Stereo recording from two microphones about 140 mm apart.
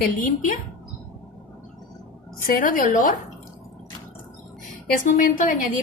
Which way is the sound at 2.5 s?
75° left (ahead or behind).